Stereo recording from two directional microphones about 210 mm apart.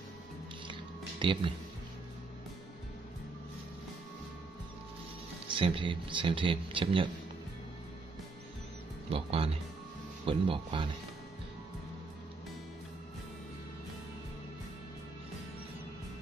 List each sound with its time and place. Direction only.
1.2 s speech: 25° right (ahead or behind)
5.5 s speech: 25° right (ahead or behind)
9.1 s speech: 25° right (ahead or behind)